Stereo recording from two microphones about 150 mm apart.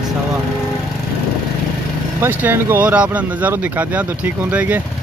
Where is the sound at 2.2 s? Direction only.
15° right (ahead or behind).